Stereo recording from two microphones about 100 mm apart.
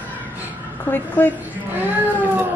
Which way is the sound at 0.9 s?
20° left (ahead or behind).